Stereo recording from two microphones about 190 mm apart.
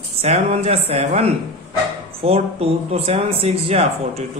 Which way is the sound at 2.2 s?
30° right (ahead or behind).